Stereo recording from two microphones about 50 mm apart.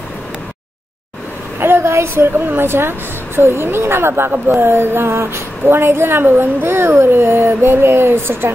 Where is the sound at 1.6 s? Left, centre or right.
Right.